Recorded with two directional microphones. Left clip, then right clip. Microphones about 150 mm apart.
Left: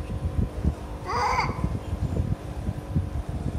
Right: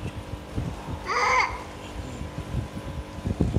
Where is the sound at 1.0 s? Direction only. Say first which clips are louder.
Right 3 dB; 50° left (ahead or behind).